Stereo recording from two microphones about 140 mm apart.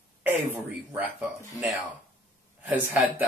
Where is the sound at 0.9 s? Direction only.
10° right (ahead or behind).